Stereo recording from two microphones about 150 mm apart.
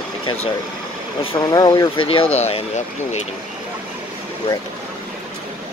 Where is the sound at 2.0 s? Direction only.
35° left (ahead or behind).